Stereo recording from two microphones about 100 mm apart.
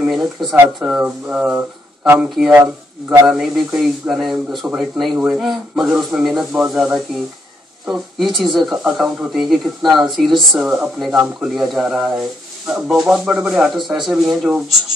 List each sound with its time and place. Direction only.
0.0 s speech: 5° right (ahead or behind)
0.8 s speech: 15° right (ahead or behind)
2.6 s a man's voice: 30° right (ahead or behind)
3.3 s speech: 5° right (ahead or behind)